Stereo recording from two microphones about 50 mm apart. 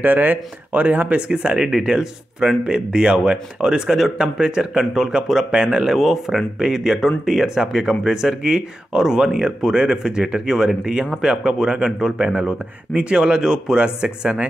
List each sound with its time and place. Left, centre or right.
0.0 s speech: right; by 5.9 s centre
5.9 s speech: centre; by 14.5 s right